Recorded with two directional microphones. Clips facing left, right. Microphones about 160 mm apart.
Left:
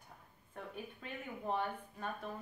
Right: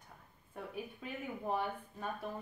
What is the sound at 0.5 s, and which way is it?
Speech, 5° right (ahead or behind).